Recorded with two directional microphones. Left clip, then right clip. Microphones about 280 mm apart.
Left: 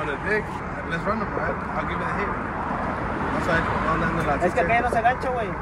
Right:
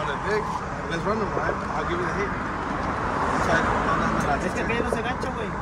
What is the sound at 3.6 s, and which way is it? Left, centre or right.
Vehicle, right.